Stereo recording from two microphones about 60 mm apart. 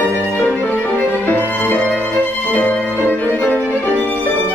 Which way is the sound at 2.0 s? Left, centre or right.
Left.